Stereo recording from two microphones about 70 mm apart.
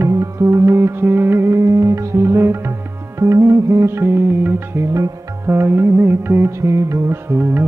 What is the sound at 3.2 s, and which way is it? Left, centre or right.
Music, right.